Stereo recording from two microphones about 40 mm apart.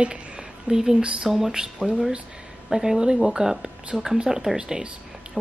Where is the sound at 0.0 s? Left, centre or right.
Right.